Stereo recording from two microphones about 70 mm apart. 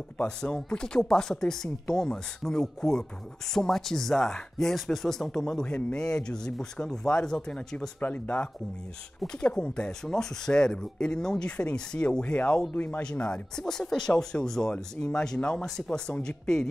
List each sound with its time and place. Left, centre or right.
0.2 s speech: centre
8.0 s speech: left
9.3 s speech: centre
12.7 s speech: left
13.0 s speech: centre